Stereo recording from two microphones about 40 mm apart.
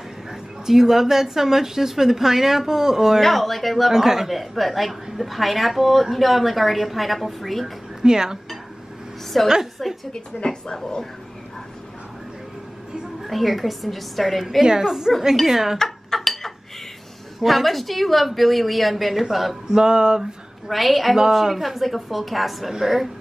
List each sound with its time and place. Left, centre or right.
0.3 s a woman's voice: centre
3.2 s a woman's voice: centre
3.9 s a woman's voice: centre
8.0 s a woman's voice: centre
9.3 s a woman's voice: centre
10.1 s speech: centre
13.2 s a woman's voice: centre
14.6 s a woman's voice: centre
15.8 s dishes: centre
17.4 s a woman's voice: centre
19.8 s a sound: centre
20.2 s a woman's voice: centre